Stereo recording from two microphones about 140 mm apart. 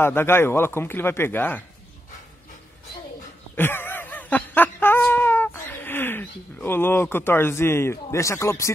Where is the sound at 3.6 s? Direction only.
15° left (ahead or behind).